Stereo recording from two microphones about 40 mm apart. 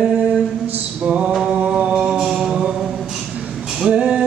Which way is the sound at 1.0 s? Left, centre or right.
Right.